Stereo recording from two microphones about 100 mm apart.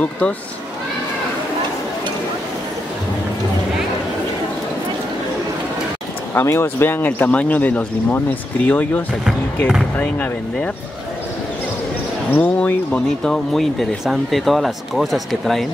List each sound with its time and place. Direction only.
6.3 s speech: 25° left (ahead or behind)
12.3 s speech: 15° left (ahead or behind); by 15.6 s centre (ahead or behind)